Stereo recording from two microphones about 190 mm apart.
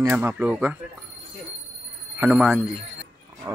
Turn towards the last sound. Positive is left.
turn(degrees=-20)  # may be behind; listen again after turning